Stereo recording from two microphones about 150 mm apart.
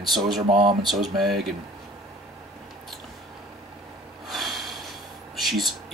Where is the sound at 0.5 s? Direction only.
35° right (ahead or behind).